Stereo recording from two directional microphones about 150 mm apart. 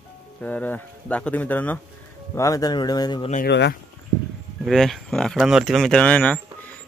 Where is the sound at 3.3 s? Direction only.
75° left (ahead or behind).